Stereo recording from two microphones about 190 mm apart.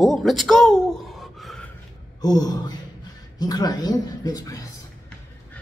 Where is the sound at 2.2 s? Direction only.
20° left (ahead or behind).